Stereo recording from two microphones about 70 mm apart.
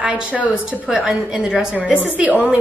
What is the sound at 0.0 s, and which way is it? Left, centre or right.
A woman's voice, centre.